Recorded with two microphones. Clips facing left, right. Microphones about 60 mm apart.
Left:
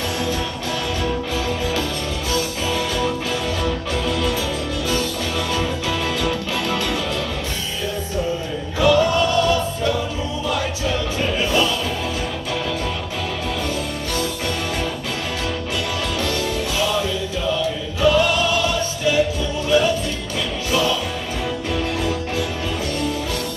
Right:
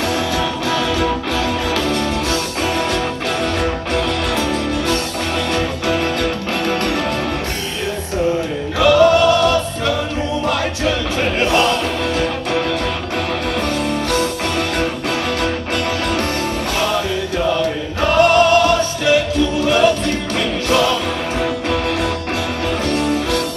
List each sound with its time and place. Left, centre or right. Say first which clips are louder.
1.0 s music: right 4 dB; right
2.3 s music: right 3 dB; right
5.5 s music: right 4 dB; right
8.8 s choir: right 5 dB; right
18.0 s music: right 5 dB; right